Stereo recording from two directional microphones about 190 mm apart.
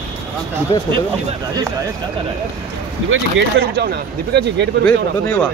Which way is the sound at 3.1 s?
70° right (ahead or behind).